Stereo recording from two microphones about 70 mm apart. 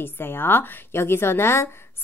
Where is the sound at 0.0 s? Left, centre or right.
Left.